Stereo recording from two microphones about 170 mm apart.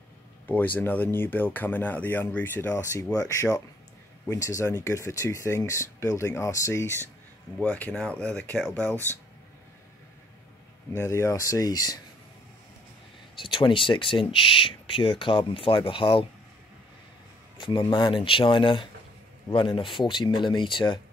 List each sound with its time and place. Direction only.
0.5 s speech: 10° left (ahead or behind)
10.9 s speech: 15° left (ahead or behind)
13.4 s speech: 30° left (ahead or behind)
17.6 s speech: 30° left (ahead or behind)